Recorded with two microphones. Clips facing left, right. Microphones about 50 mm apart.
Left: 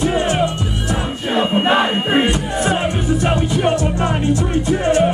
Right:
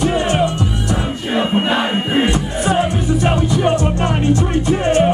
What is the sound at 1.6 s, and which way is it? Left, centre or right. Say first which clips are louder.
Music: left 2 dB; centre.